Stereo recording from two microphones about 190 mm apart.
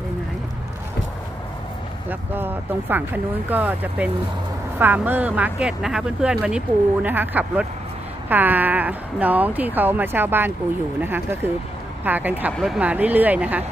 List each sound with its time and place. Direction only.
2.0 s speech: 10° right (ahead or behind)